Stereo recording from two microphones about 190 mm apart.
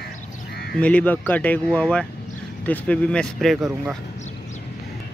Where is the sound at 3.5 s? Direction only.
15° right (ahead or behind).